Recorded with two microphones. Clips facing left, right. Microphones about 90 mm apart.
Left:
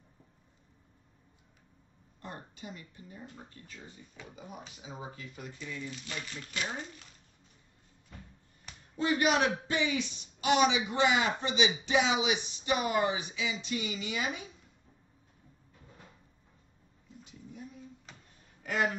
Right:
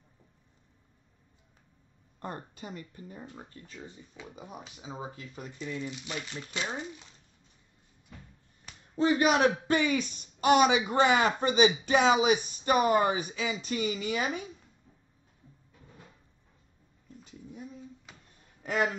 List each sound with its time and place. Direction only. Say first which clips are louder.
2.1 s speech: right 5 dB; 45° right (ahead or behind)
3.7 s speech: right 5 dB; 20° right (ahead or behind)
5.8 s speech: right 4 dB; 20° right (ahead or behind)
8.9 s speech: right 3 dB; 30° right (ahead or behind)
18.6 s a sound: right 2 dB; 35° right (ahead or behind)